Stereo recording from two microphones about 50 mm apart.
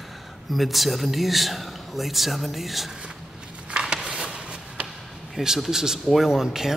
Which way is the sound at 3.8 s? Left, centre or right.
Centre.